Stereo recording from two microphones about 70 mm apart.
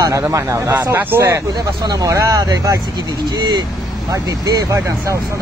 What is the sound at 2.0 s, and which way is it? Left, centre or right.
Speech, right.